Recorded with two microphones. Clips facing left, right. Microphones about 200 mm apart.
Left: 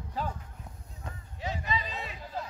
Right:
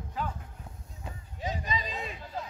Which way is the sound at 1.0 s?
15° right (ahead or behind).